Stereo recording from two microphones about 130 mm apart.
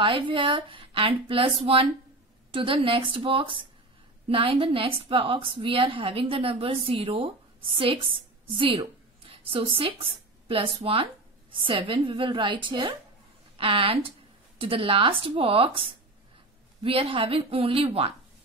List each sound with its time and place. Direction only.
0.0 s a woman's voice: 40° right (ahead or behind)